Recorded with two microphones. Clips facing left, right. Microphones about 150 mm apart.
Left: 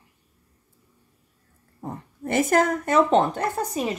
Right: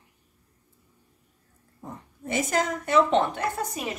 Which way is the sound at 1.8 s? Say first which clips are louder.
Left 6 dB; 55° left (ahead or behind).